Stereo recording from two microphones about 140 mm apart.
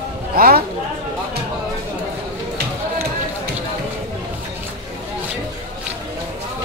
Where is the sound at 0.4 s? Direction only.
90° right.